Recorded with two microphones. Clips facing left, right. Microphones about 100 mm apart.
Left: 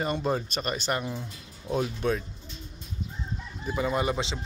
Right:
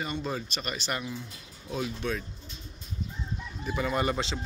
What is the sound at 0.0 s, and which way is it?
Speech, 40° left (ahead or behind).